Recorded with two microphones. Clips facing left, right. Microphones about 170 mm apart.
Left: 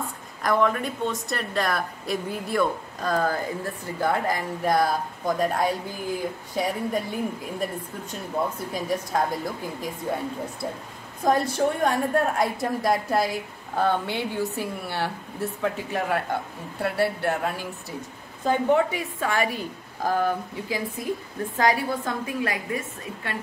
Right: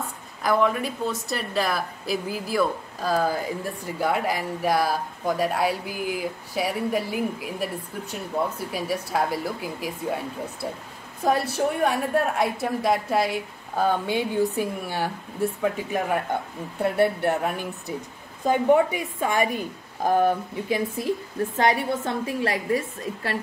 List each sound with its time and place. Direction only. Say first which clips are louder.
0.4 s a woman's voice: right 1 dB; 5° right (ahead or behind)
13.8 s a woman's voice: right 2 dB; 15° right (ahead or behind)
18.4 s a woman's voice: right 2 dB; 15° right (ahead or behind); by 23.3 s 35° right (ahead or behind)